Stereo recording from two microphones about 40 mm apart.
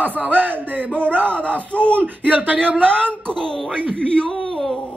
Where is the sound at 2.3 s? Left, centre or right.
Right.